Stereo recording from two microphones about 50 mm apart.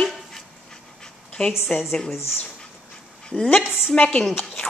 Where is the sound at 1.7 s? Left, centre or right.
Left.